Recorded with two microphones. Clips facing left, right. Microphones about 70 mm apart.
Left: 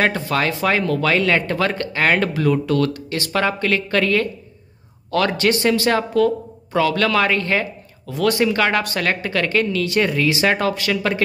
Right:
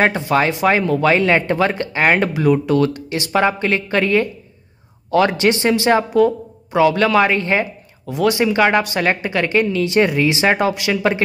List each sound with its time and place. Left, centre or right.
0.0 s speech: right